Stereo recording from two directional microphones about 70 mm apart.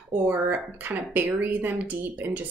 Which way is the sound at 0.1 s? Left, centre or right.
Right.